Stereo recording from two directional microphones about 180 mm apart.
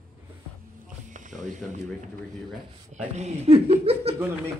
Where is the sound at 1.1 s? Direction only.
45° right (ahead or behind).